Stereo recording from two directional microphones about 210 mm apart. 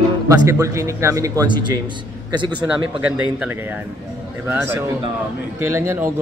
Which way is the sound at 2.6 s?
5° right (ahead or behind).